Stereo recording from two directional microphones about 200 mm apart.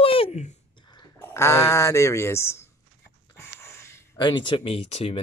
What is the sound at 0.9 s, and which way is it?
Speech, 15° left (ahead or behind).